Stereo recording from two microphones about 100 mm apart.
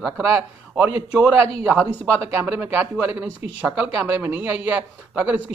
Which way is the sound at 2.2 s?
25° right (ahead or behind).